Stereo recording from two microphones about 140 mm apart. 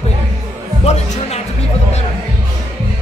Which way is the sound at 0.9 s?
50° left (ahead or behind).